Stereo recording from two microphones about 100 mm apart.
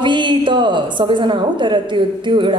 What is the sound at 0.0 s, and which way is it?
A man's voice, 50° right (ahead or behind).